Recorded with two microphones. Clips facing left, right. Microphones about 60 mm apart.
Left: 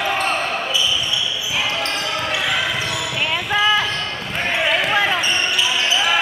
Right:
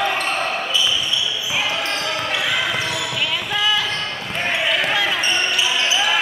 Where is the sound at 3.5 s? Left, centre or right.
Left.